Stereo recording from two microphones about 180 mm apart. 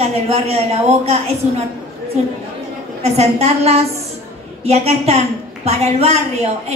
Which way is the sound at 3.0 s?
35° right (ahead or behind).